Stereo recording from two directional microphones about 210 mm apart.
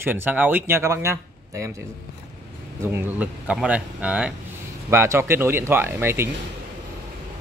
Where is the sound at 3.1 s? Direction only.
5° right (ahead or behind).